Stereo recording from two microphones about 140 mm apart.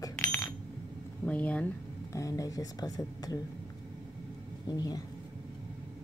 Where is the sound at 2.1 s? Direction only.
25° left (ahead or behind).